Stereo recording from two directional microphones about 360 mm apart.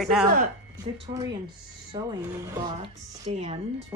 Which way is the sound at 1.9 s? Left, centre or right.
Centre.